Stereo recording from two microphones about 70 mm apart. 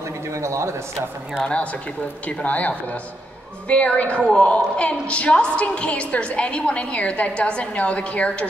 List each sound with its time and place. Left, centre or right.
0.3 s a man's voice: right
1.4 s a woman's voice: centre